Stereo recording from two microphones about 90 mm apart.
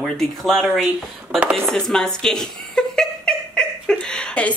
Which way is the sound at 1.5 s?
5° left (ahead or behind).